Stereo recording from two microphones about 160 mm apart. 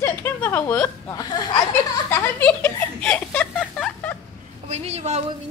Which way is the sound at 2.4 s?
10° left (ahead or behind).